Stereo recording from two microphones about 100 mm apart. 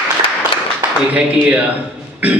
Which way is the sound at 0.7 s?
15° right (ahead or behind).